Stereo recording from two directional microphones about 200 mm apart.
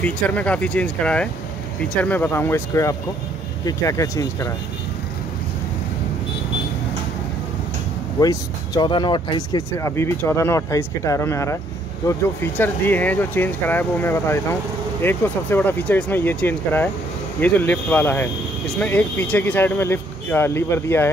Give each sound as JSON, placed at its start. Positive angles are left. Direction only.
{"t": 0.0, "sound": "speech", "side_deg": 5}
{"t": 8.2, "sound": "speech", "side_deg": 20}